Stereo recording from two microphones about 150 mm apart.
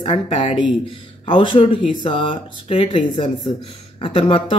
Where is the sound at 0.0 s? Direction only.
40° left (ahead or behind).